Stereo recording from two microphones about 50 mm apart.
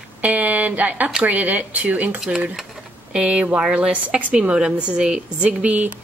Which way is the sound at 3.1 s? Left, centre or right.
Centre.